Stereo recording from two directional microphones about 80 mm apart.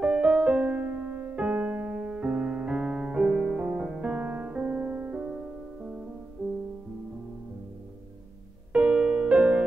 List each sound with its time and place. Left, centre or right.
0.0 s music: centre
5.3 s music: centre
6.4 s music: right
8.7 s music: centre